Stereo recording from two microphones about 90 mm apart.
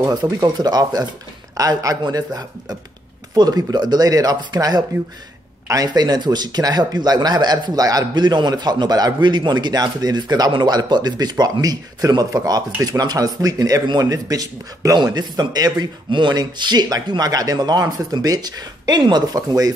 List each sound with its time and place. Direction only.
0.0 s a man's voice: 50° right (ahead or behind)
19.3 s speech: 40° right (ahead or behind)